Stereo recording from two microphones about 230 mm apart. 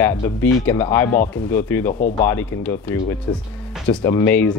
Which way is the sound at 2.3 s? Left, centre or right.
Centre.